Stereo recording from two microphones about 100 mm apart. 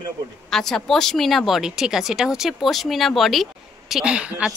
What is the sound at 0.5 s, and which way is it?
Speech, 5° left (ahead or behind).